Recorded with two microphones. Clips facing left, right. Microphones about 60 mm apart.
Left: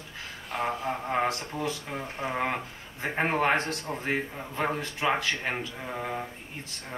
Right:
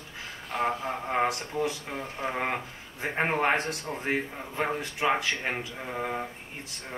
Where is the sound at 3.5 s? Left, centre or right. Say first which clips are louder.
Left 1 dB; right.